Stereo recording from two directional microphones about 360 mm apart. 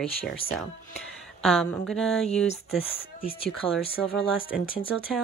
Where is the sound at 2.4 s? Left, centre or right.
Centre.